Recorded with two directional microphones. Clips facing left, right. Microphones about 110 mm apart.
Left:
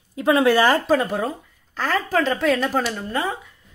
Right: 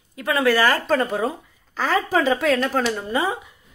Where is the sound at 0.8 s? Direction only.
5° left (ahead or behind).